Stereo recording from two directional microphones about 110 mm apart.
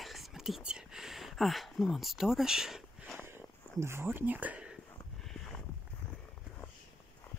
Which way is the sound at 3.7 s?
25° right (ahead or behind).